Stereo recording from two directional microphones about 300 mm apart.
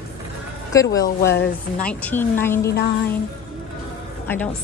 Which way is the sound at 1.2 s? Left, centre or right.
Left.